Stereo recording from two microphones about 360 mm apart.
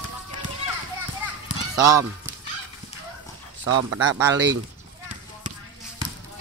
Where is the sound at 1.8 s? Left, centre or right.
Centre.